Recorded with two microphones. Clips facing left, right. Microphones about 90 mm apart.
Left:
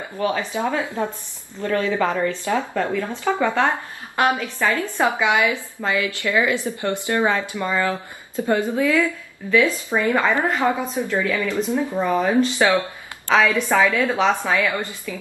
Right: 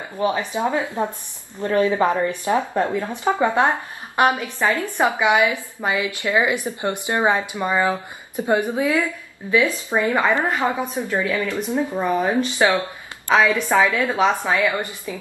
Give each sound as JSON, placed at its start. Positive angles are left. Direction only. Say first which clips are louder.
{"t": 0.2, "sound": "a woman's voice", "louder": "right 1 dB", "side_deg": -20}